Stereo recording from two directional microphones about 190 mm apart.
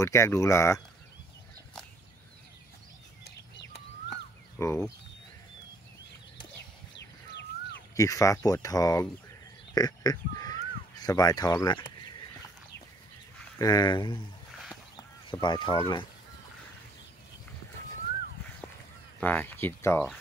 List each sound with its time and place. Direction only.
0.0 s speech: 15° left (ahead or behind)
4.6 s speech: 15° left (ahead or behind)
7.9 s speech: 15° left (ahead or behind)
13.6 s speech: 20° left (ahead or behind)
19.1 s speech: 10° left (ahead or behind)